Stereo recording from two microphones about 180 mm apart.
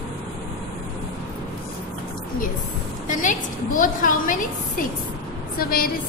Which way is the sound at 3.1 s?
45° left (ahead or behind).